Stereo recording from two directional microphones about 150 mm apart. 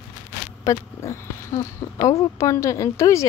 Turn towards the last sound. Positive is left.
turn(degrees=20)  # may be behind; listen again after turning